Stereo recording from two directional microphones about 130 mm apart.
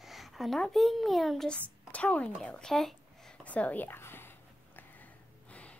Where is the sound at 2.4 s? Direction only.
5° left (ahead or behind).